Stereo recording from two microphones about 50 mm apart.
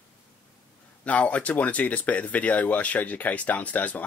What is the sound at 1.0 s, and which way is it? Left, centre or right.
Speech, left.